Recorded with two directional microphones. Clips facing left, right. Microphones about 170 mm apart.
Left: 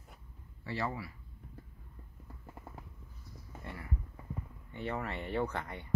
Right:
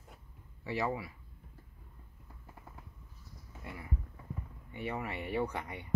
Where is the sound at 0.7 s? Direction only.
15° right (ahead or behind).